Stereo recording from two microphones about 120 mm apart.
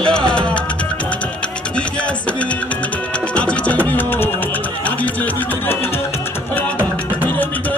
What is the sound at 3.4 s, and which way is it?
Music, 10° left (ahead or behind).